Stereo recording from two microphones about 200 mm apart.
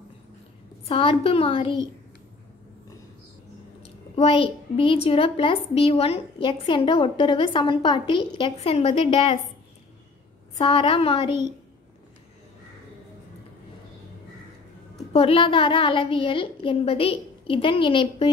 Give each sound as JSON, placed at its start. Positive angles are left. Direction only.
{"t": 0.8, "sound": "a child's voice", "side_deg": 30}
{"t": 3.8, "sound": "a child's voice", "side_deg": 30}
{"t": 10.6, "sound": "a child's voice", "side_deg": 25}
{"t": 15.1, "sound": "a child's voice", "side_deg": 30}